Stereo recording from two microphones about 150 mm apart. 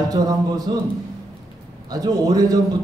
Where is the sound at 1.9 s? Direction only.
25° right (ahead or behind).